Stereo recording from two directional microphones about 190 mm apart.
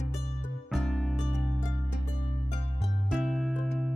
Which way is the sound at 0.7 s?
Centre (ahead or behind).